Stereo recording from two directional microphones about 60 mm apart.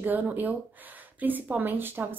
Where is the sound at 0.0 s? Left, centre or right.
Right.